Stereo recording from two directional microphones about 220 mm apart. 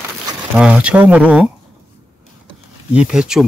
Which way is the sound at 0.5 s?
5° right (ahead or behind).